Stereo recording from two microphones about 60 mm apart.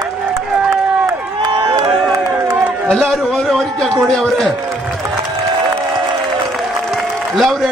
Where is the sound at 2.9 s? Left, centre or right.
Centre.